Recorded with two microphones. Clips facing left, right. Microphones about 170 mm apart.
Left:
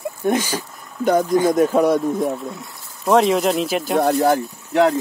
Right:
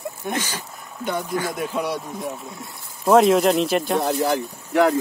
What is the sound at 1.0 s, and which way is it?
Speech, 40° left (ahead or behind).